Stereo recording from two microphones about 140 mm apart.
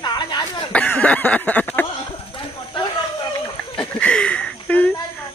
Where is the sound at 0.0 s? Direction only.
30° left (ahead or behind).